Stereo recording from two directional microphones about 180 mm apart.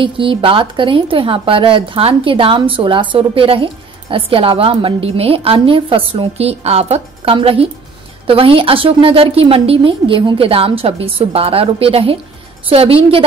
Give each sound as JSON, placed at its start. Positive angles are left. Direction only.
{"t": 0.0, "sound": "a woman's voice", "side_deg": -30}